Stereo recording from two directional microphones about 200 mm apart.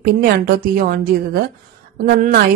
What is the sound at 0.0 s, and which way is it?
Speech, 50° right (ahead or behind).